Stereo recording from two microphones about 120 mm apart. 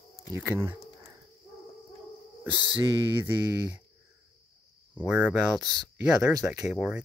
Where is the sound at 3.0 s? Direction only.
15° right (ahead or behind).